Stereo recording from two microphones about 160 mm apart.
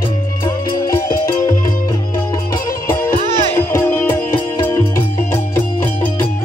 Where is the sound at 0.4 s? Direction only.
20° left (ahead or behind).